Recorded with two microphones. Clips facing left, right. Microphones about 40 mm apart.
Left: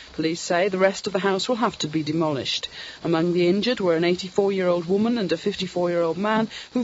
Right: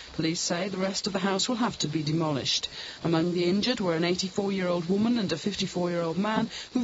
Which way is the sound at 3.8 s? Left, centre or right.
Centre.